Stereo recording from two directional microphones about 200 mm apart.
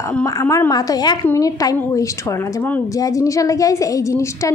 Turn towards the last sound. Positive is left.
turn(degrees=15)  # may be behind; listen again after turning